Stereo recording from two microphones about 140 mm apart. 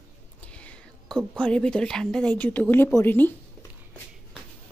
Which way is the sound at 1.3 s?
5° left (ahead or behind).